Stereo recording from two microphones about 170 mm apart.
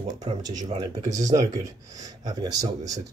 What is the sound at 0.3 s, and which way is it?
Speech, 35° right (ahead or behind).